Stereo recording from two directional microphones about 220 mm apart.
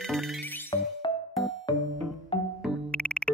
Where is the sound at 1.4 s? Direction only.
Centre (ahead or behind).